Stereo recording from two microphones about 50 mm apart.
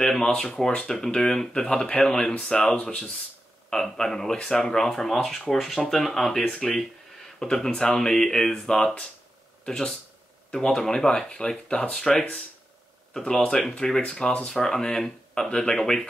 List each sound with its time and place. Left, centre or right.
0.0 s a sound: centre
0.3 s speech: centre
3.7 s speech: centre
11.9 s speech: centre
15.8 s speech: centre